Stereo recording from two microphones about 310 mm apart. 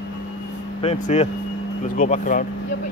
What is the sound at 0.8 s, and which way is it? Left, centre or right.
Speech, centre.